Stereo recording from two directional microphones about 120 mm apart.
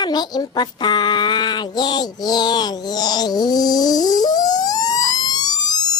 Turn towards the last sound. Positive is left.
turn(degrees=35)  # may be behind; listen again after turning